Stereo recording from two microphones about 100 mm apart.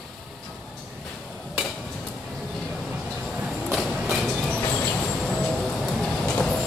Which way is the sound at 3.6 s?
Centre (ahead or behind).